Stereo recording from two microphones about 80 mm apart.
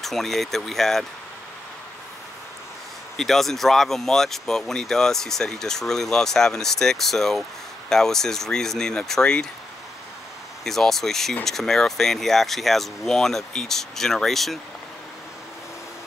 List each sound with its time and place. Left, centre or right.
0.0 s speech: centre
3.2 s speech: centre
10.6 s speech: centre